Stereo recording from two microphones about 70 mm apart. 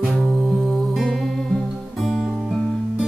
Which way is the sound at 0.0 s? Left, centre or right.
Centre.